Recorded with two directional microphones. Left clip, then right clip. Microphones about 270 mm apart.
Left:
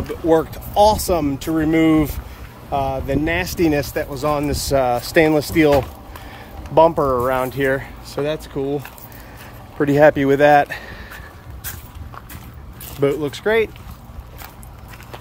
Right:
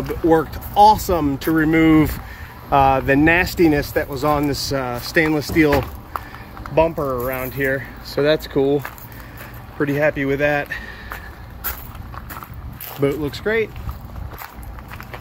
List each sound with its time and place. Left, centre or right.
0.3 s speech: centre
7.0 s speech: left
7.2 s speech: centre
8.1 s speech: centre
9.8 s speech: left
13.0 s speech: centre